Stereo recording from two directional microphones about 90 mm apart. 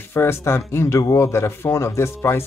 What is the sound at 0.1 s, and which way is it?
Speech, 30° left (ahead or behind).